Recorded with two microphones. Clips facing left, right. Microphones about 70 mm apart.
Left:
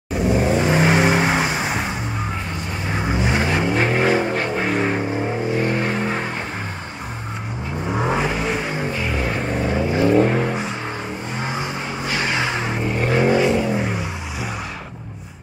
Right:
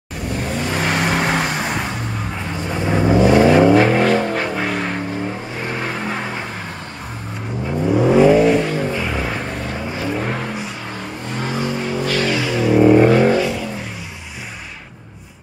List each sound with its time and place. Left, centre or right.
0.1 s vehicle: centre
3.1 s vehicle: centre
3.4 s vehicle: centre
8.2 s vehicle: centre
12.4 s vehicle: left
12.8 s vehicle: centre
13.1 s vehicle: centre
13.4 s vehicle: left